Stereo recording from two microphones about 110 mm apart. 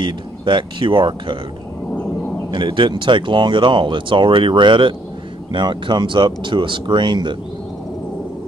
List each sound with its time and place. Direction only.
0.0 s speech: 45° right (ahead or behind)
2.5 s speech: 50° right (ahead or behind)